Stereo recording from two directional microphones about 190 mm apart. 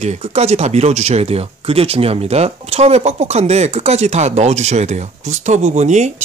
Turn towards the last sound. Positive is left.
turn(degrees=-35)  # may be behind; listen again after turning